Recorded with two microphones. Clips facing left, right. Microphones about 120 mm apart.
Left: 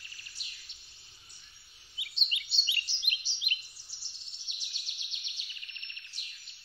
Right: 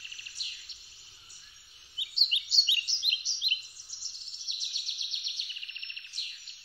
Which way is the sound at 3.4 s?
20° right (ahead or behind).